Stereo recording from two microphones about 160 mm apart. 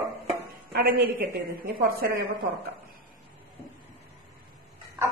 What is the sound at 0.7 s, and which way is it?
A woman's voice, 80° right.